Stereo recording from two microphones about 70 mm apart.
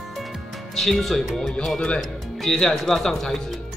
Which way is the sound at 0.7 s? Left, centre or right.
Centre.